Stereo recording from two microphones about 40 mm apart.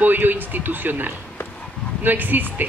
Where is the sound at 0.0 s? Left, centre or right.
Right.